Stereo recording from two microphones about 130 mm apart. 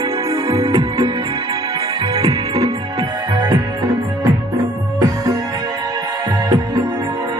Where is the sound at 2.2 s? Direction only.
30° right (ahead or behind).